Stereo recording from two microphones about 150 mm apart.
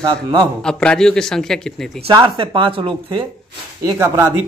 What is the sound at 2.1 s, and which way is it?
Speech, 30° right (ahead or behind).